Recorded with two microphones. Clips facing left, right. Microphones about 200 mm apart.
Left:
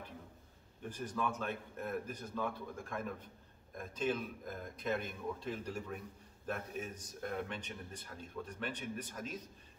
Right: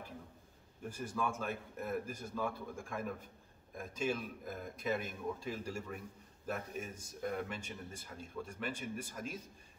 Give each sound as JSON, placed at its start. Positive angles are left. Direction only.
{"t": 0.8, "sound": "speech", "side_deg": -10}